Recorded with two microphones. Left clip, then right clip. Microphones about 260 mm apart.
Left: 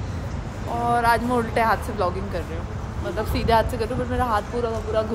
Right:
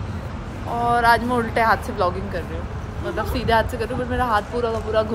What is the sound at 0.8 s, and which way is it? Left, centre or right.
Speech, centre.